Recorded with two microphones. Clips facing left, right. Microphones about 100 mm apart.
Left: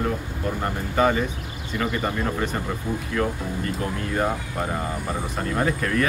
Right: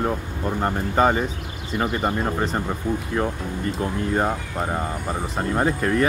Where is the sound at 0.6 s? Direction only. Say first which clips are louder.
Right 2 dB; 35° right (ahead or behind).